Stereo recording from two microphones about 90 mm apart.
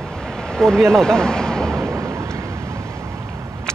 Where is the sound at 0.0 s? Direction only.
10° left (ahead or behind).